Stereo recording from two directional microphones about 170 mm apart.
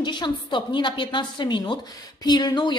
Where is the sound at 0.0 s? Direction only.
25° left (ahead or behind).